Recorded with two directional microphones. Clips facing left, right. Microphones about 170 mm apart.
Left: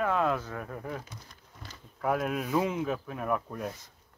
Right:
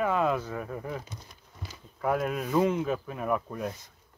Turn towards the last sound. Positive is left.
turn(degrees=0)  # may be behind; listen again after turning